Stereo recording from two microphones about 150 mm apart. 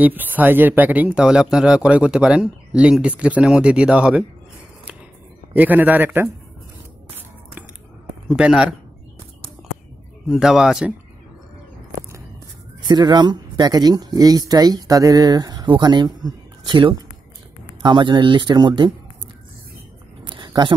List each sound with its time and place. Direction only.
0.0 s speech: 10° right (ahead or behind)
5.5 s speech: 10° right (ahead or behind)
8.3 s speech: 5° right (ahead or behind)
10.2 s speech: 5° right (ahead or behind)
12.8 s speech: 30° right (ahead or behind)
20.2 s a sound: 30° right (ahead or behind)